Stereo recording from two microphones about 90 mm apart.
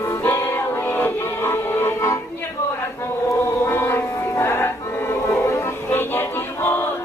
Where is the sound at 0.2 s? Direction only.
25° left (ahead or behind).